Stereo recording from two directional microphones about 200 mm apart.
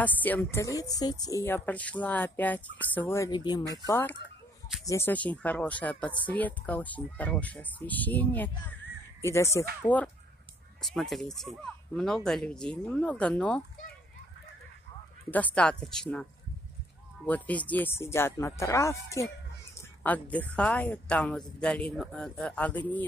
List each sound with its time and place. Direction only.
0.0 s speech: 10° left (ahead or behind)
15.3 s speech: 5° left (ahead or behind)
17.3 s speech: 10° left (ahead or behind)